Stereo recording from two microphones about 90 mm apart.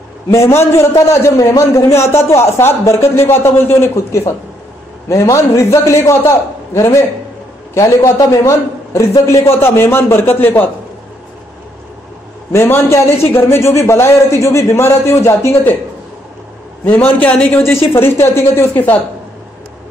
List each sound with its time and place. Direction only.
0.3 s a man's voice: 30° left (ahead or behind)
12.5 s a man's voice: 25° left (ahead or behind)
16.8 s a man's voice: 20° left (ahead or behind)
17.9 s a man's voice: 25° left (ahead or behind)